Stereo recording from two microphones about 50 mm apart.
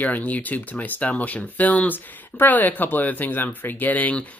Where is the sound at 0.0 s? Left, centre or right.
Left.